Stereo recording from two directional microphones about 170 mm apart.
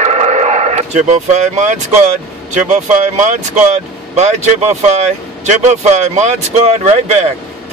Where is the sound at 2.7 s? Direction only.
45° right (ahead or behind).